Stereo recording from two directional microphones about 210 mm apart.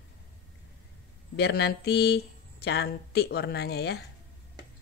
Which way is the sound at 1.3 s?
50° left (ahead or behind).